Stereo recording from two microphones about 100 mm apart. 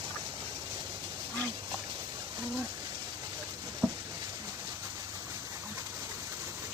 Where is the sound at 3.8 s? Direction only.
5° left (ahead or behind).